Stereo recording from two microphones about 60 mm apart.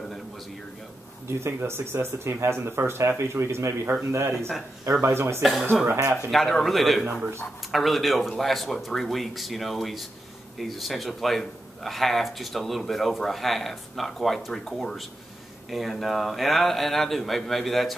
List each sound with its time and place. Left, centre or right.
1.2 s speech: right
5.4 s speech: centre